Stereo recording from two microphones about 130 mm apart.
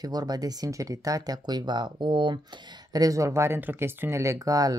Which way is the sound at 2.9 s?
25° right (ahead or behind).